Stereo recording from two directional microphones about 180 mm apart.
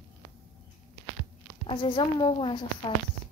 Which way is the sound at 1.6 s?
25° left (ahead or behind).